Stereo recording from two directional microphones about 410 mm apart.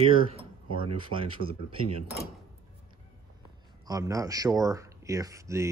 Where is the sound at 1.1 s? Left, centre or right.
Left.